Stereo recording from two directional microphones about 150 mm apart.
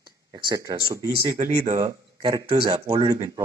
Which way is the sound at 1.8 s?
35° right (ahead or behind).